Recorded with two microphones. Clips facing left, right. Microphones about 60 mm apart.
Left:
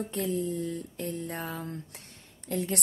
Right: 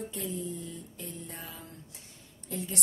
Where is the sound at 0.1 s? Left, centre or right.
Left.